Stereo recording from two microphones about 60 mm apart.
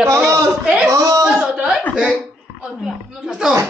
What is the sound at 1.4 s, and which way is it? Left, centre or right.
Chuckle, centre.